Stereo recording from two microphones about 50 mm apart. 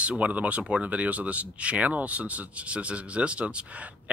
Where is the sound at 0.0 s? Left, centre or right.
Right.